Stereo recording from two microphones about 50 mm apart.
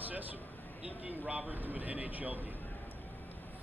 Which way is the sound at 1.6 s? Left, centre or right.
Right.